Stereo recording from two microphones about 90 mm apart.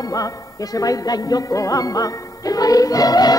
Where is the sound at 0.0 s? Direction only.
40° left (ahead or behind).